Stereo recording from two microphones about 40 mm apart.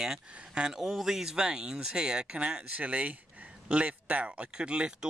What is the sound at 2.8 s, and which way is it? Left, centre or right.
Speech, right.